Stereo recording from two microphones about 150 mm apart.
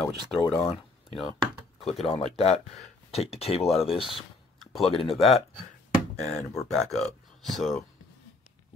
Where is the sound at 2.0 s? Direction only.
45° left (ahead or behind).